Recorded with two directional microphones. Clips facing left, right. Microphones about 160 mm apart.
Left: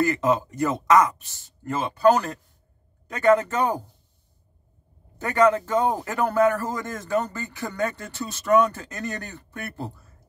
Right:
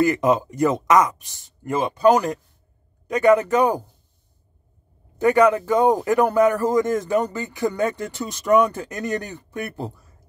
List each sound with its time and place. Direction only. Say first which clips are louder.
0.0 s speech: right 3 dB; 15° right (ahead or behind)
5.2 s speech: right 4 dB; 15° right (ahead or behind)